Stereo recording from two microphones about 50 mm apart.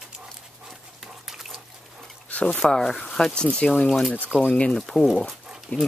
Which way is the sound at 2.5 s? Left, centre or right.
Centre.